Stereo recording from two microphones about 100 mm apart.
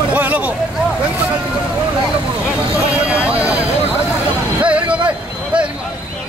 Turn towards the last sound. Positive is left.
turn(degrees=-10)  # may be behind; listen again after turning